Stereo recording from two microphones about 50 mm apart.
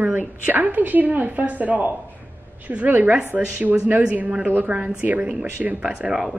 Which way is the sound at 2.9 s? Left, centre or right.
Right.